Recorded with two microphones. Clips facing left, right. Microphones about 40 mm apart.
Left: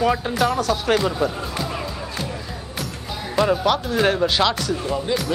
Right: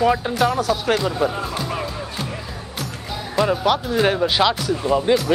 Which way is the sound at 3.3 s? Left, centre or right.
Centre.